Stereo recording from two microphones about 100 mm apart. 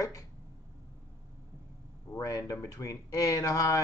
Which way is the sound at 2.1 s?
35° left (ahead or behind).